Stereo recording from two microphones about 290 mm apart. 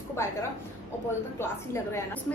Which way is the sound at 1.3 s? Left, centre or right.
Centre.